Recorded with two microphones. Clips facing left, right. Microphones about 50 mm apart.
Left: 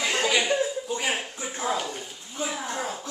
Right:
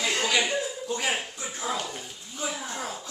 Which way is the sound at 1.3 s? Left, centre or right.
Left.